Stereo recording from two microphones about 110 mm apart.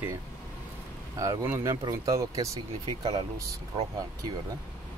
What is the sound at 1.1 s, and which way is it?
Speech, 30° right (ahead or behind).